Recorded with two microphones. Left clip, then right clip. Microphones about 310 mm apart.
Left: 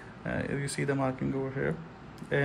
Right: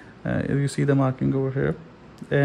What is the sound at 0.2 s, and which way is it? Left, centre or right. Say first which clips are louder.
Speech: right 7 dB; right.